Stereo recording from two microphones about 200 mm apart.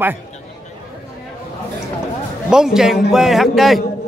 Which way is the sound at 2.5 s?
5° right (ahead or behind).